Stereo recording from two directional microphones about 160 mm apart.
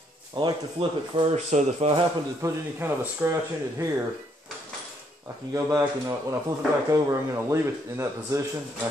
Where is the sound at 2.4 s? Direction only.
15° right (ahead or behind).